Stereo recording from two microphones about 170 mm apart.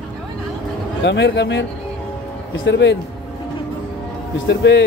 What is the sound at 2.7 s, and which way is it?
Speech, 90° left.